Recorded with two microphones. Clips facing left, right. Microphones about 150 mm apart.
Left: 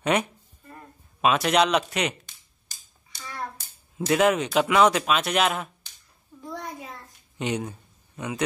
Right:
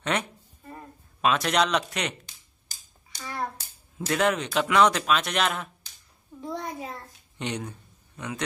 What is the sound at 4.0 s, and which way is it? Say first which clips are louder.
Speech: left 4 dB; 5° left (ahead or behind).